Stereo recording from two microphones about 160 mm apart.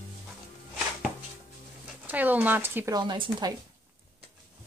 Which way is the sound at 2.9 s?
30° right (ahead or behind).